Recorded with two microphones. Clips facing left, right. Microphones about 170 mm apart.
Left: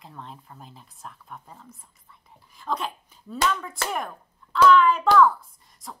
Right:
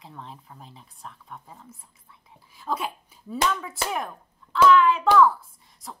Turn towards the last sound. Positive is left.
turn(degrees=0)  # may be behind; listen again after turning